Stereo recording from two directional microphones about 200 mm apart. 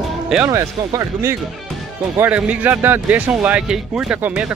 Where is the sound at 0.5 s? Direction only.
15° right (ahead or behind).